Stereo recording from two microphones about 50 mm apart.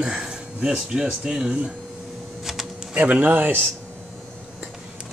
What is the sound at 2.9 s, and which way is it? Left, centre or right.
Speech, right.